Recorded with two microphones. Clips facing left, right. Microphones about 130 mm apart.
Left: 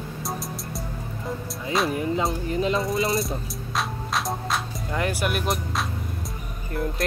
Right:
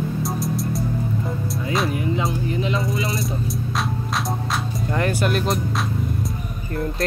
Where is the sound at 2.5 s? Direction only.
40° left (ahead or behind).